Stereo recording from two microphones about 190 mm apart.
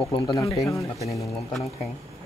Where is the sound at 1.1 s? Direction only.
Centre (ahead or behind).